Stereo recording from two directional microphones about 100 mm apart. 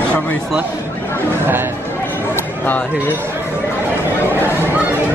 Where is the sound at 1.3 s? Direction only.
20° right (ahead or behind).